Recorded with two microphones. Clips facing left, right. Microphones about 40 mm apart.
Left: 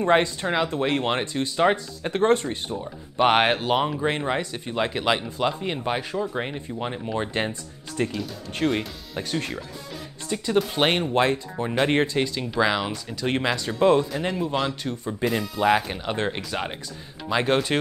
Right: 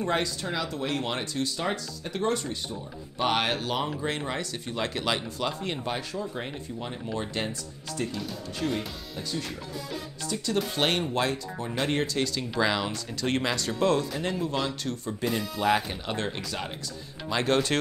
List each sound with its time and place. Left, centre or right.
0.0 s speech: left
1.6 s speech: left; by 6.0 s centre
6.1 s speech: left
8.5 s speech: left
10.3 s speech: left
10.7 s speech: left
12.5 s speech: centre
15.2 s speech: centre